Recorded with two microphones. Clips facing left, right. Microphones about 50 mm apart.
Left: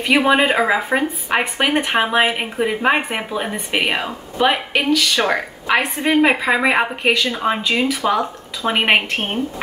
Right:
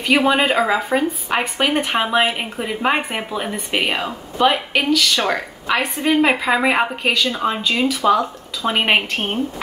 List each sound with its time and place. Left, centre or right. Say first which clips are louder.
0.0 s speech: left 1 dB; centre
5.2 s a woman's voice: left 2 dB; left
6.2 s speech: left 1 dB; centre